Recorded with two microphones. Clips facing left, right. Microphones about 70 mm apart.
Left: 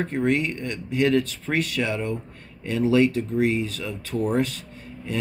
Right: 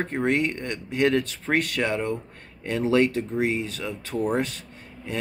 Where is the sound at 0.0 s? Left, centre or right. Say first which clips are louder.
Left 1 dB; right.